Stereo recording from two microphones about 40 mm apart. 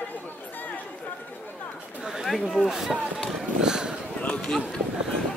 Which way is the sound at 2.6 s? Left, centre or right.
Centre.